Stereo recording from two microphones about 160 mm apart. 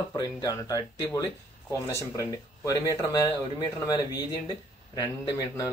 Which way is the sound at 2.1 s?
20° left (ahead or behind).